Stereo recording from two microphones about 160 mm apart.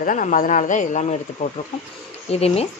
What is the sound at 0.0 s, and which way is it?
A woman's voice, 55° left (ahead or behind).